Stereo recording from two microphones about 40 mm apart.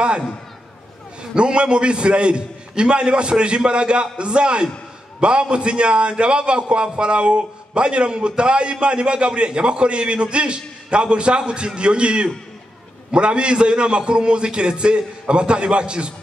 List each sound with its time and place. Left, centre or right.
1.3 s a man's voice: right